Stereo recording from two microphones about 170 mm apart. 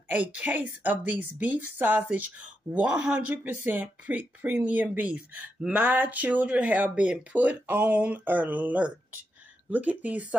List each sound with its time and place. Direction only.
0.1 s speech: 10° right (ahead or behind)